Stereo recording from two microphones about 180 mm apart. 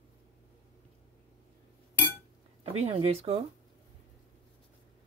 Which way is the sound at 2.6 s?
30° right (ahead or behind).